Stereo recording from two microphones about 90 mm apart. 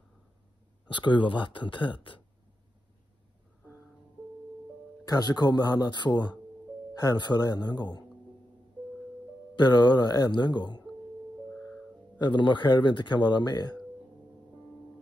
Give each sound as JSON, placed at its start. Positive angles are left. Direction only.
{"t": 0.9, "sound": "speech", "side_deg": 65}
{"t": 5.0, "sound": "speech", "side_deg": 50}
{"t": 9.6, "sound": "speech", "side_deg": 55}
{"t": 12.2, "sound": "speech", "side_deg": 60}